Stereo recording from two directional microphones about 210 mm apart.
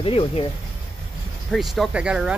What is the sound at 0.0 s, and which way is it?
Speech, 25° left (ahead or behind).